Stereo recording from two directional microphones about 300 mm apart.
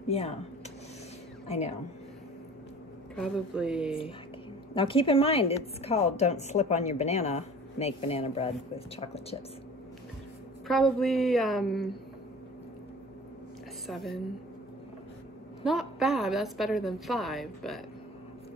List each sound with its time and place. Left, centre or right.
0.1 s a woman's voice: left
1.5 s a woman's voice: left
3.2 s a woman's voice: centre
4.7 s a woman's voice: centre
10.7 s a woman's voice: centre
13.8 s a woman's voice: centre
15.6 s a woman's voice: centre